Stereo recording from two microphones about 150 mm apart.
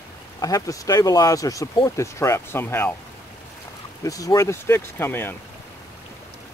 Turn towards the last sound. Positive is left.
turn(degrees=15)  # may be behind; listen again after turning